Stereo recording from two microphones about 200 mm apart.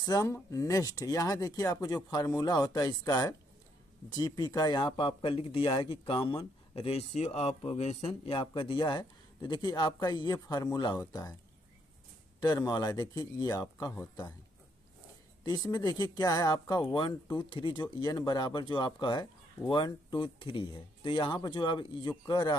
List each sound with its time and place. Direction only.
0.0 s speech: 20° left (ahead or behind)
12.4 s speech: 20° left (ahead or behind)
15.4 s speech: 20° left (ahead or behind)